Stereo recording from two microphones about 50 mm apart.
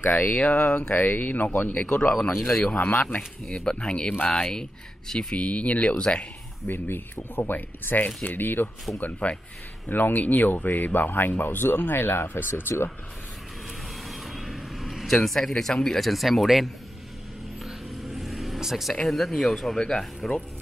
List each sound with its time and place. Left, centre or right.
0.0 s speech: left
2.5 s speech: centre
2.8 s speech: left
3.2 s speech: centre
3.6 s speech: centre
5.4 s speech: left
6.7 s speech: left
9.0 s speech: left
9.8 s speech: left
13.7 s vehicle: centre
15.0 s speech: centre
16.1 s speech: centre
17.6 s a sound: centre
19.0 s speech: centre